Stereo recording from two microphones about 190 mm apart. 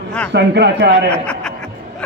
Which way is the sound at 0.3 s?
60° right (ahead or behind).